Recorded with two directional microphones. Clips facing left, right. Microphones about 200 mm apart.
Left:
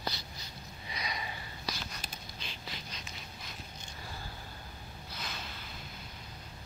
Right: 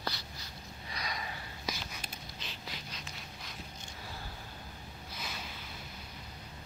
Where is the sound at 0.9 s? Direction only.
Centre (ahead or behind).